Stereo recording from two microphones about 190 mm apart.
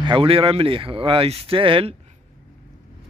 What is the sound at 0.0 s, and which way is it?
A man's voice, 25° right (ahead or behind).